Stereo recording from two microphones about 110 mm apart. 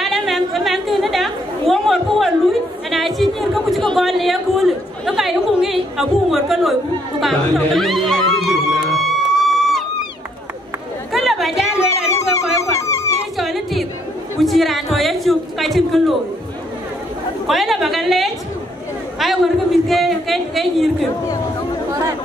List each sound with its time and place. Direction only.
0.0 s chatter: centre (ahead or behind)
7.2 s music: centre (ahead or behind)
11.1 s chatter: centre (ahead or behind)
12.1 s a sound: 25° left (ahead or behind)
13.4 s a sound: centre (ahead or behind)
17.5 s a man's voice: centre (ahead or behind)